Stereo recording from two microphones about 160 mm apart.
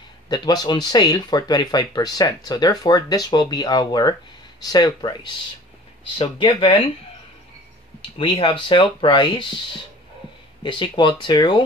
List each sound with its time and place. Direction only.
0.3 s speech: 25° left (ahead or behind)
8.2 s speech: 30° left (ahead or behind)
10.6 s speech: 30° left (ahead or behind)